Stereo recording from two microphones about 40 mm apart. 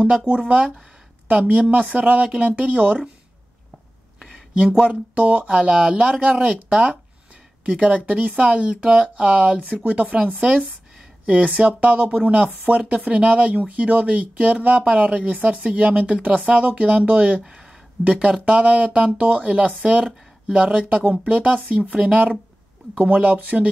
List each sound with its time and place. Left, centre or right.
0.0 s speech: right
4.8 s speech: right
5.6 s speech: right
10.2 s speech: right